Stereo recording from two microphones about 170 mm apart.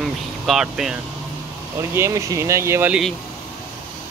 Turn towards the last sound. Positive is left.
turn(degrees=-15)  # may be behind; listen again after turning